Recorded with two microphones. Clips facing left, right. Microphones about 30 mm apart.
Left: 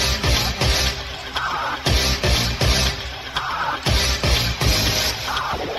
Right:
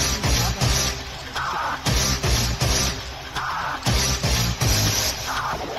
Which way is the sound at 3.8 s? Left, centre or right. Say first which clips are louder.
Left 3 dB; left.